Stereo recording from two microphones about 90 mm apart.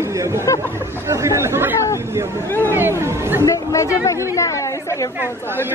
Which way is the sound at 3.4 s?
35° left (ahead or behind).